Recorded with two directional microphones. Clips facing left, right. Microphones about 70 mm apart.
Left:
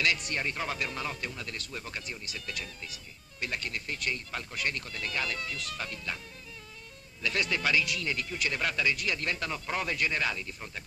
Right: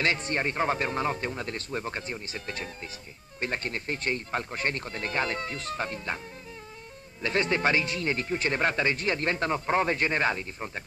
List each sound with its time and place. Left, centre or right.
0.0 s speech: right